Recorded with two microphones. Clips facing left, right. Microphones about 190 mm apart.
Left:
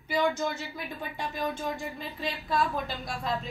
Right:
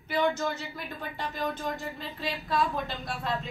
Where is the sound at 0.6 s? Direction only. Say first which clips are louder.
Left 1 dB; 10° left (ahead or behind).